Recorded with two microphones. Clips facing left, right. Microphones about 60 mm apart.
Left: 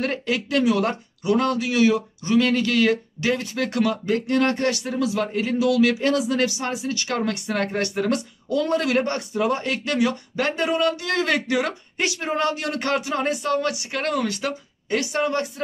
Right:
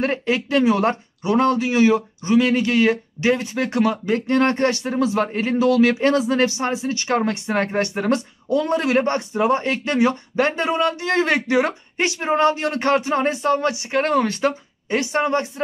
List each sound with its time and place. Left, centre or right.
0.0 s speech: right